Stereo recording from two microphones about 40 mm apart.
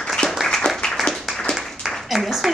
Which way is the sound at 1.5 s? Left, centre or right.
Left.